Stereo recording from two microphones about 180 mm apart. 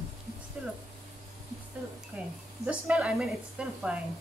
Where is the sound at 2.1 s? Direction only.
5° right (ahead or behind).